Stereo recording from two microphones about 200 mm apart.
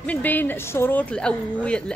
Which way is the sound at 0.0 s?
10° left (ahead or behind).